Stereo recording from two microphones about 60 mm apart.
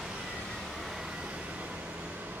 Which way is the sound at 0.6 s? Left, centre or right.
Centre.